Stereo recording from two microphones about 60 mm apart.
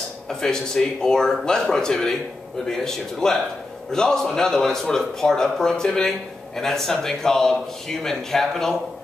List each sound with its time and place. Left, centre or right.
0.3 s speech: centre